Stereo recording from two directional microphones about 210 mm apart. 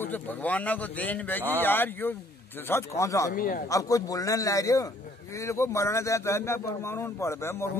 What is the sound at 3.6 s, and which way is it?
Speech, 15° left (ahead or behind).